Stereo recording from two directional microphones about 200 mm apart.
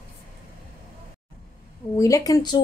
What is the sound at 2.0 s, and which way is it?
Speech, 15° left (ahead or behind).